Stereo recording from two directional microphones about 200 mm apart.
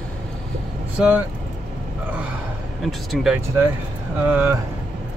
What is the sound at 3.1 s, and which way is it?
Speech, 5° right (ahead or behind).